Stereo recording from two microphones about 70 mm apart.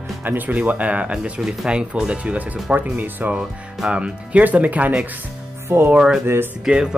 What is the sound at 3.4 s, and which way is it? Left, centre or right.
Speech, centre.